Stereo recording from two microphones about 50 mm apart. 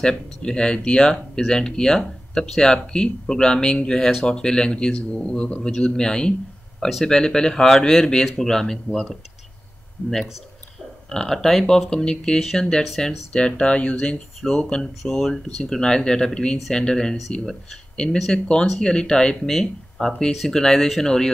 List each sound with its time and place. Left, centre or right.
0.4 s speech: centre
5.6 s speech: centre
11.1 s speech: centre
13.3 s speech: centre
19.5 s speech: centre